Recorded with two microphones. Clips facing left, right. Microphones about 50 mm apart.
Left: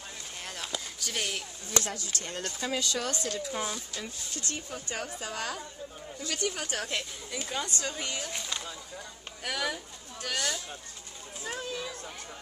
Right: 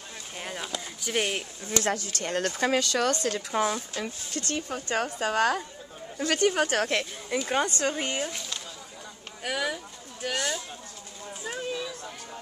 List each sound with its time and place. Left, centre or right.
0.4 s a sound: centre
1.1 s speech: right
1.9 s speech: right
7.3 s speech: right
9.4 s speech: centre
11.4 s a sound: centre